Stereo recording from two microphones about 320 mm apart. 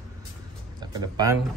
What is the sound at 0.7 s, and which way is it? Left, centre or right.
Speech, centre.